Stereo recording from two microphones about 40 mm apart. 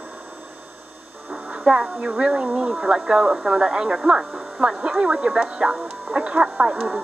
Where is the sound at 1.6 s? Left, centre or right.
Right.